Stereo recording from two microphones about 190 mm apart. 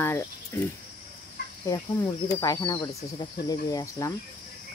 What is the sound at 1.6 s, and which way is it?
Speech, 20° left (ahead or behind).